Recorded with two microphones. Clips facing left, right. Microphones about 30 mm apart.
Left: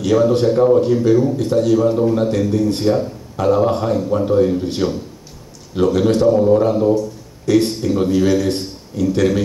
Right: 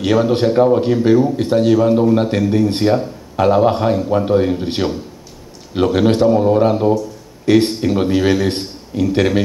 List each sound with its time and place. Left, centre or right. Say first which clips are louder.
0.0 s a man's voice: even; right